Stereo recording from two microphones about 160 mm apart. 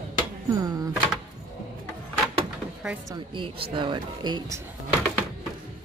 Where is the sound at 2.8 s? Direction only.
5° right (ahead or behind).